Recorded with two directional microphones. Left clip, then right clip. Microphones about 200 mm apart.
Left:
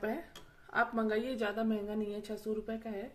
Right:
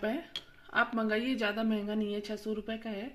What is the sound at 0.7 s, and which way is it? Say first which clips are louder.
Speech: right 2 dB; 45° right (ahead or behind).